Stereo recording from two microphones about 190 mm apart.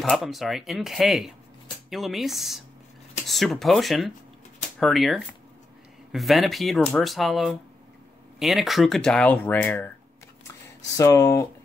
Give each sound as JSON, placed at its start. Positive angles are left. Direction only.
{"t": 0.0, "sound": "speech", "side_deg": 0}
{"t": 11.0, "sound": "speech", "side_deg": 15}